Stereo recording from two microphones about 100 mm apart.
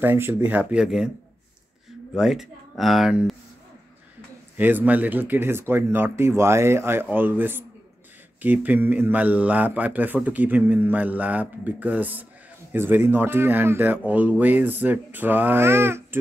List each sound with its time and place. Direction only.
0.0 s a man's voice: 20° right (ahead or behind); by 1.1 s 5° right (ahead or behind)
2.1 s speech: 5° right (ahead or behind)
4.6 s a man's voice: 20° right (ahead or behind)